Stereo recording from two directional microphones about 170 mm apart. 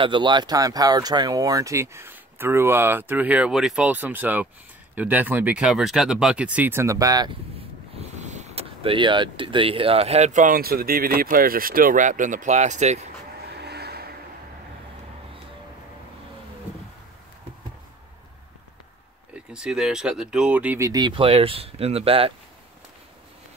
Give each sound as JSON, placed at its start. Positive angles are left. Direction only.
{"t": 0.0, "sound": "speech", "side_deg": -30}
{"t": 8.0, "sound": "speech", "side_deg": -45}
{"t": 13.5, "sound": "vehicle", "side_deg": -75}
{"t": 19.5, "sound": "speech", "side_deg": -5}